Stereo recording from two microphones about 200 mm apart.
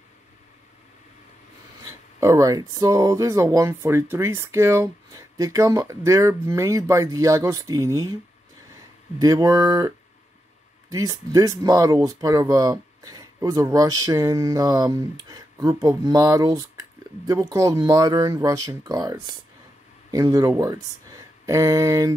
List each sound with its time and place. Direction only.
1.8 s speech: 15° right (ahead or behind)
9.2 s speech: 15° right (ahead or behind)